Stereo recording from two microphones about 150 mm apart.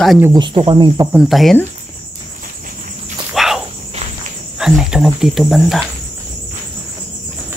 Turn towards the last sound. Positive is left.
turn(degrees=0)  # may be behind; listen again after turning